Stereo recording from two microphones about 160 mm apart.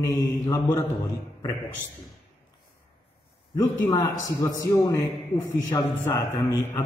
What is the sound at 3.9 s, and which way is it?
A man's voice, 25° left (ahead or behind).